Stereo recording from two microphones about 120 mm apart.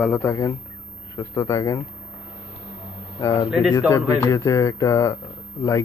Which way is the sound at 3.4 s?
5° right (ahead or behind).